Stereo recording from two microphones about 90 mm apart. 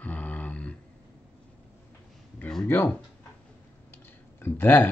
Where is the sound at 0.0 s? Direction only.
15° left (ahead or behind).